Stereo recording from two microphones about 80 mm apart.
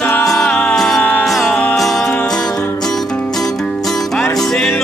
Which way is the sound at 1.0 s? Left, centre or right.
Left.